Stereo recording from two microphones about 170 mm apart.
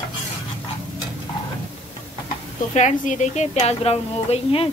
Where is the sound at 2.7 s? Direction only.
45° left (ahead or behind).